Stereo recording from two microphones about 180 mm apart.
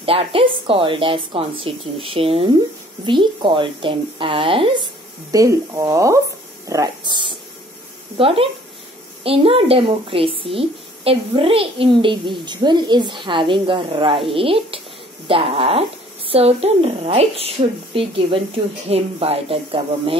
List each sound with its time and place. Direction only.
0.0 s a woman's voice: 30° right (ahead or behind)
5.3 s a woman's voice: 20° right (ahead or behind)